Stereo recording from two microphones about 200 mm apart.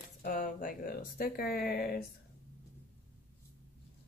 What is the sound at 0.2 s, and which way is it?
Speech, 45° left (ahead or behind).